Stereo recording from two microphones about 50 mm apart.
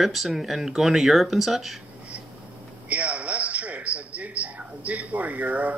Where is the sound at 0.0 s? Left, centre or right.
Centre.